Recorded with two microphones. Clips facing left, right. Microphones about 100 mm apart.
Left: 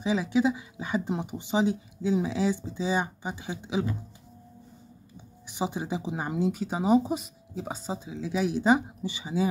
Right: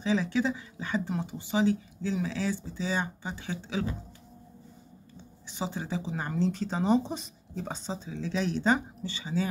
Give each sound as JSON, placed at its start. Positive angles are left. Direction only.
{"t": 0.0, "sound": "speech", "side_deg": 15}
{"t": 5.5, "sound": "speech", "side_deg": 15}